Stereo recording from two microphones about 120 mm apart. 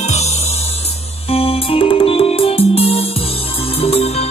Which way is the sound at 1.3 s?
50° left (ahead or behind).